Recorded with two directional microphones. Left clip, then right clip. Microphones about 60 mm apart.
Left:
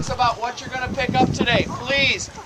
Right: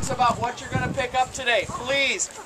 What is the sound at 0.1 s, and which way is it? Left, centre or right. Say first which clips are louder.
Speech: left 1 dB; right.